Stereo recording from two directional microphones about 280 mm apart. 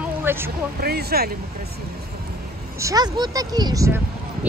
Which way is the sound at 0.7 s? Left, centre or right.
Right.